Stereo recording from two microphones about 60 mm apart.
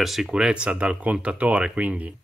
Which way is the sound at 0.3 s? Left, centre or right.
Centre.